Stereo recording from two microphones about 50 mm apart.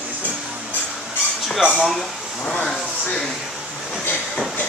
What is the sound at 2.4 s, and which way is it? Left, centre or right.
Speech, centre.